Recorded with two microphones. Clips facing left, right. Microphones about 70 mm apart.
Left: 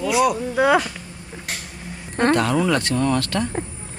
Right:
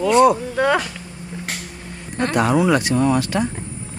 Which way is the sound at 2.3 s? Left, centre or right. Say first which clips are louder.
Right 5 dB; centre.